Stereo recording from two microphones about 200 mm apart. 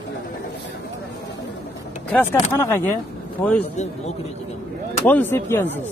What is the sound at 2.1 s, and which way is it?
Speech, 10° left (ahead or behind).